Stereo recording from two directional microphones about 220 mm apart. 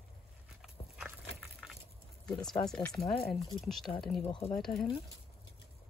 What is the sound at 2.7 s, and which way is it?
Speech, 5° left (ahead or behind).